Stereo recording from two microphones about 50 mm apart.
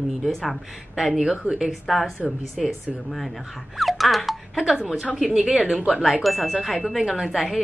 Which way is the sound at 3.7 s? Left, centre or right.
Centre.